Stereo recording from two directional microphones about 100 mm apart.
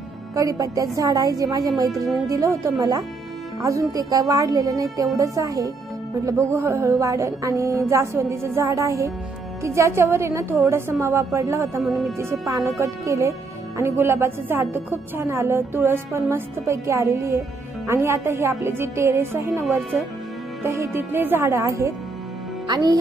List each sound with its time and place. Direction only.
0.3 s a woman's voice: 35° right (ahead or behind)
11.8 s speech: centre (ahead or behind)
12.2 s a woman's voice: 30° right (ahead or behind)
20.6 s a woman's voice: 30° right (ahead or behind)